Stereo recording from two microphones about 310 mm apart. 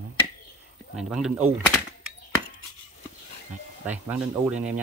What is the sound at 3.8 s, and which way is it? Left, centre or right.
Speech, centre.